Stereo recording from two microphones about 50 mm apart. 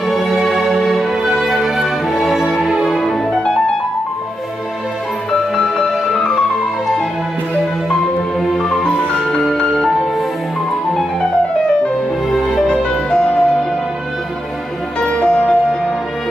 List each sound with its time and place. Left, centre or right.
0.0 s music: centre
5.6 s music: centre
7.9 s music: centre
8.8 s music: left
9.4 s music: centre
12.6 s music: left
15.0 s music: centre